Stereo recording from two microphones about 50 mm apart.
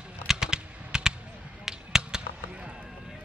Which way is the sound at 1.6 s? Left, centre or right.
Centre.